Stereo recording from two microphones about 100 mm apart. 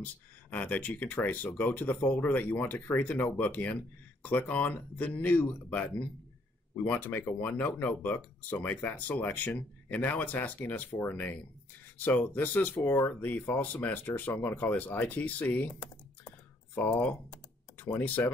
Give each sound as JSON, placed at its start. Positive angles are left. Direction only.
{"t": 0.0, "sound": "speech", "side_deg": 15}